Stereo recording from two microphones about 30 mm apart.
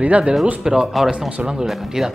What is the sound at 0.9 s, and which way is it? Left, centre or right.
Speech, centre.